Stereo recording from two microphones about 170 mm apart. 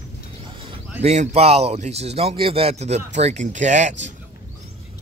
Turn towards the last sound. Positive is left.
turn(degrees=-45)  # may be behind; listen again after turning